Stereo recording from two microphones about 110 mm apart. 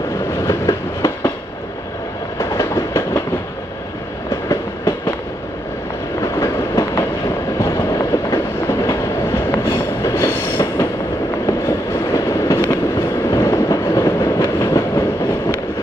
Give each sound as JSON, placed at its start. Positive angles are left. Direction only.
{"t": 0.4, "sound": "train", "side_deg": 30}
{"t": 2.3, "sound": "train", "side_deg": 25}
{"t": 4.5, "sound": "train", "side_deg": 30}
{"t": 6.2, "sound": "train", "side_deg": 30}
{"t": 12.1, "sound": "train", "side_deg": 25}